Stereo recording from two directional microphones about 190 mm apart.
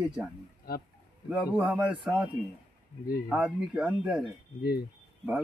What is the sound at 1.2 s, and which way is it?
Speech, 5° right (ahead or behind).